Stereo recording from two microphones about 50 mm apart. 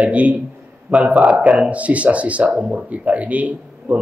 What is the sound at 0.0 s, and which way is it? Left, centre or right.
Speech, right.